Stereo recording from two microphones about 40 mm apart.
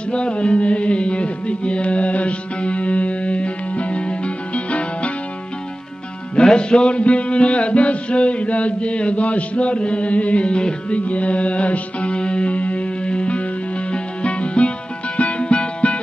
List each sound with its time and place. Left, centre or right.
0.1 s music: left
6.3 s music: left